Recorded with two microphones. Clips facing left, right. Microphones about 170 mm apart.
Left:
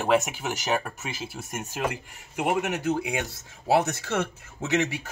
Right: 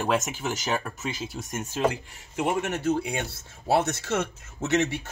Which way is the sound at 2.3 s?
60° left (ahead or behind).